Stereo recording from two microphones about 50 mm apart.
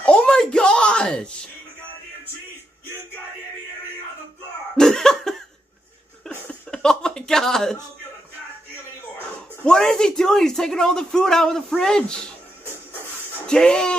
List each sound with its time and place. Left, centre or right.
0.0 s a sound: centre
4.7 s cough: centre
6.7 s a sound: centre
9.7 s speech: centre
12.6 s shuffle: right
13.5 s speech: centre